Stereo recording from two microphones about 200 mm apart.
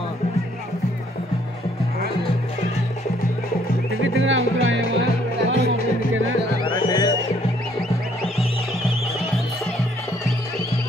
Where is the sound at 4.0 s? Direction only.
75° right (ahead or behind).